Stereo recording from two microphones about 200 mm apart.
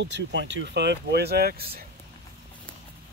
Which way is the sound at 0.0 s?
65° right (ahead or behind).